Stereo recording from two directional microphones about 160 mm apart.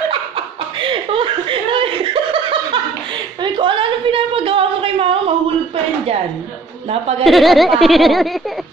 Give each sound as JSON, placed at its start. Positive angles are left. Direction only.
{"t": 0.7, "sound": "chuckle", "side_deg": -35}
{"t": 3.4, "sound": "a sound", "side_deg": -30}
{"t": 6.9, "sound": "a woman's voice", "side_deg": -40}
{"t": 7.2, "sound": "speech", "side_deg": 0}